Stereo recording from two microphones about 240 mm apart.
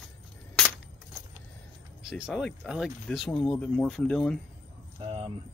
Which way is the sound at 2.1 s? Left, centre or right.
Centre.